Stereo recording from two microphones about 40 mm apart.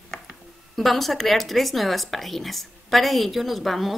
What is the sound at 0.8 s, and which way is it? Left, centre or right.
Speech, centre.